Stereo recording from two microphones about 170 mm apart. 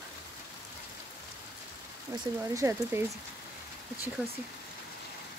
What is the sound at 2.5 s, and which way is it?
Speech, 15° right (ahead or behind).